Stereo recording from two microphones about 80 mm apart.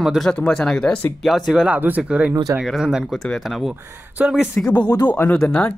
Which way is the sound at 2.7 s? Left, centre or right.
Centre.